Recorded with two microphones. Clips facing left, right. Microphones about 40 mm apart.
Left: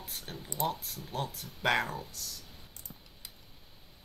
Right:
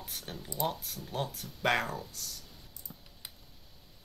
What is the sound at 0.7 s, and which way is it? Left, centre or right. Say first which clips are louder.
Speech: even; centre.